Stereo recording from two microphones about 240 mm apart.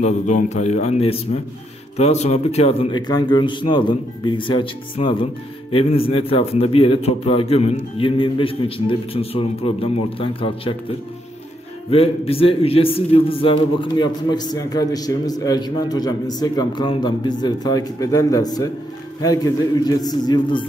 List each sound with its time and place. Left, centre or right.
0.0 s a man's voice: left
11.9 s a man's voice: left